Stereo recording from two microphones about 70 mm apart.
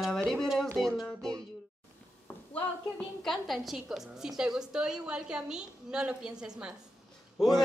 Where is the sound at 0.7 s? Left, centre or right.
Centre.